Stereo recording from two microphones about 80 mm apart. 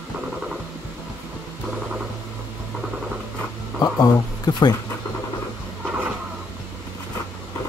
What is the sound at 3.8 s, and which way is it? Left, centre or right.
Speech, left.